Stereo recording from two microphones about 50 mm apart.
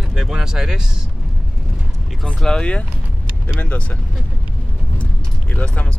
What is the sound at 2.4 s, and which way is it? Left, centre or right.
Speech, left.